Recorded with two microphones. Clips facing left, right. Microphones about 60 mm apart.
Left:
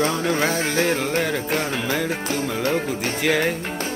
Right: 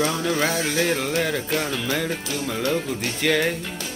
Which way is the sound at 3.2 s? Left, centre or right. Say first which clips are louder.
Even; centre.